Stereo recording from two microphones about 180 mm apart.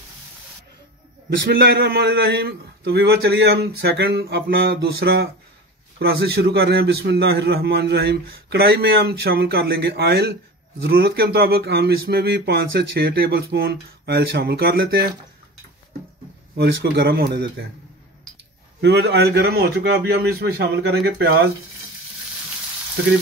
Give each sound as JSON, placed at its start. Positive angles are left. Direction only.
{"t": 1.4, "sound": "a man's voice", "side_deg": -70}
{"t": 16.5, "sound": "a man's voice", "side_deg": -70}
{"t": 18.8, "sound": "a man's voice", "side_deg": -70}